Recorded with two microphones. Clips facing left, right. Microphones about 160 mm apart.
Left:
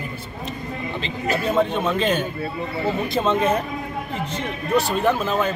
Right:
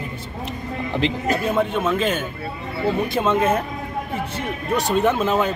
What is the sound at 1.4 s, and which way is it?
A man's voice, 10° right (ahead or behind).